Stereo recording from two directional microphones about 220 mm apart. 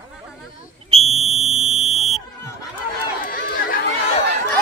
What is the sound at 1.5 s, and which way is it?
Buzzer, centre (ahead or behind).